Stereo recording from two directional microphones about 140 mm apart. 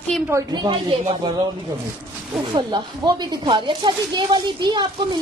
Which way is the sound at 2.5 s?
35° right (ahead or behind).